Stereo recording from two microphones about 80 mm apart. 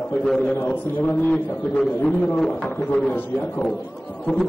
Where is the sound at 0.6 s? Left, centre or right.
Left.